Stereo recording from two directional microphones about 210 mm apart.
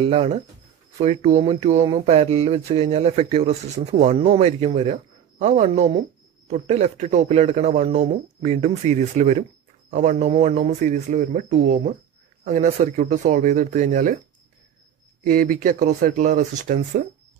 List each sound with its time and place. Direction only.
0.0 s speech: 30° right (ahead or behind)
12.4 s speech: 35° right (ahead or behind)
15.2 s speech: 40° right (ahead or behind)